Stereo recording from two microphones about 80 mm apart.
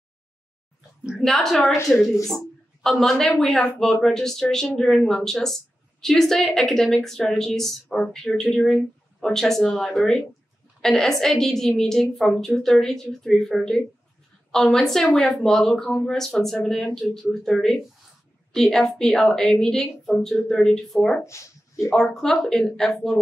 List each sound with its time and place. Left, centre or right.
1.2 s speech: centre
21.2 s a sound: left
21.9 s speech: centre